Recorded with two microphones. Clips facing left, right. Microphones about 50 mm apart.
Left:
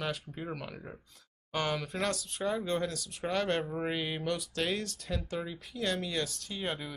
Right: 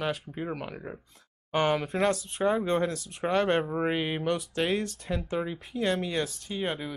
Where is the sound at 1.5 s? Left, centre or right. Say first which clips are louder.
Right 7 dB; right.